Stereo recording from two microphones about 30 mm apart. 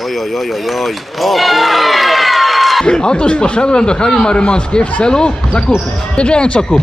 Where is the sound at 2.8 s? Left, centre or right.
Left.